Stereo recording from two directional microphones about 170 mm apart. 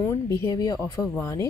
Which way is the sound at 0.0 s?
15° left (ahead or behind).